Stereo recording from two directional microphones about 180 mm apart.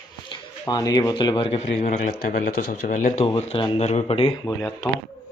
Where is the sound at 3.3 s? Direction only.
30° left (ahead or behind).